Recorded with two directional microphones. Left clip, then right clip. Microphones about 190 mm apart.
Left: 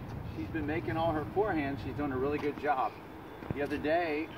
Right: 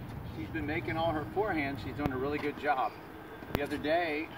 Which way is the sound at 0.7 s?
5° right (ahead or behind).